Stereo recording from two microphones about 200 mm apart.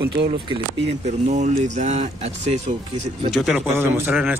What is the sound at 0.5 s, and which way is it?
Speech, 30° right (ahead or behind).